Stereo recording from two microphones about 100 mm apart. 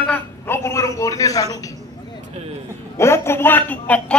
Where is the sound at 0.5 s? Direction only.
30° left (ahead or behind).